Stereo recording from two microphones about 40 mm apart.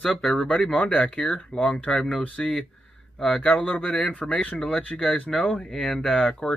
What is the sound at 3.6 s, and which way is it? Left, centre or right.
Speech, left.